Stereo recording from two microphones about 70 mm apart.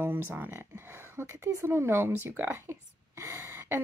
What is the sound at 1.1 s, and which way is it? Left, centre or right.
Speech, right.